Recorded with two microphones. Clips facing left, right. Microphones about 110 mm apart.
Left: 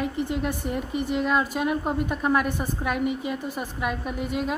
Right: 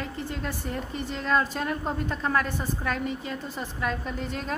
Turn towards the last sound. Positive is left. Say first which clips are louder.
# left 5 dB
turn(degrees=10)  # may be behind; listen again after turning